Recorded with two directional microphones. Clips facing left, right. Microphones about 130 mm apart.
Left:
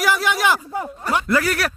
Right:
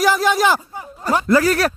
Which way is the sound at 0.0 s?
35° right (ahead or behind).